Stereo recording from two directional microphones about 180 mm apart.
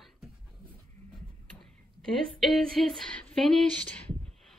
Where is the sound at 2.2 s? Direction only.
Centre (ahead or behind).